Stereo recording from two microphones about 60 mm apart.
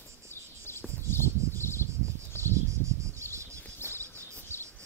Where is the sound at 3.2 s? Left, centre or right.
Right.